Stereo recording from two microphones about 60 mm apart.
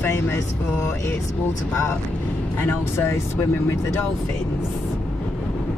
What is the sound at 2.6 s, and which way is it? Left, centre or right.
Speech, left.